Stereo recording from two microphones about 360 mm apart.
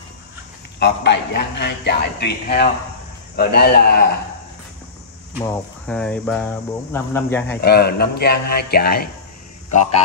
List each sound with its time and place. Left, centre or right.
0.7 s a woman's voice: left
5.4 s speech: centre
7.6 s a woman's voice: left